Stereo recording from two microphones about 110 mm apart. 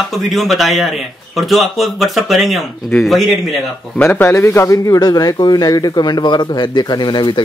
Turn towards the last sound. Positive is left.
turn(degrees=45)  # may be behind; listen again after turning